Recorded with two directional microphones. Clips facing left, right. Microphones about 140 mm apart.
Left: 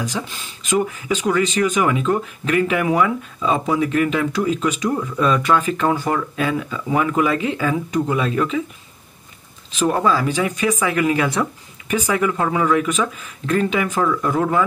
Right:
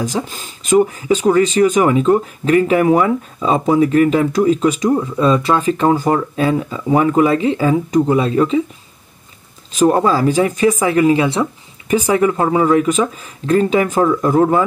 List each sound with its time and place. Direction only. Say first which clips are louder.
0.0 s speech: right 5 dB; 40° right (ahead or behind)
9.8 s speech: right 5 dB; 40° right (ahead or behind)